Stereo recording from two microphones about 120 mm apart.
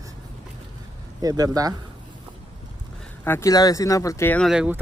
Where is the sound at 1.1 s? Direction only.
30° right (ahead or behind).